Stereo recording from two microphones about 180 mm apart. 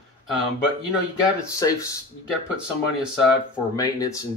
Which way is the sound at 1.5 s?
20° left (ahead or behind).